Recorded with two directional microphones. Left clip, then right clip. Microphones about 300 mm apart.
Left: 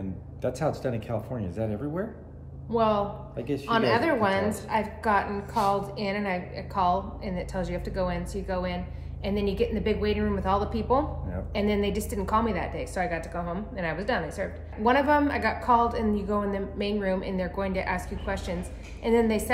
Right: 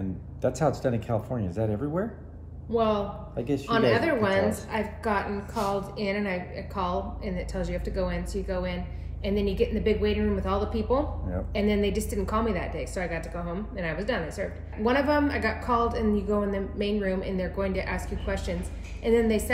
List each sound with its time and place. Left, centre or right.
0.4 s speech: centre
2.7 s a woman's voice: centre
3.3 s speech: centre
3.6 s a woman's voice: centre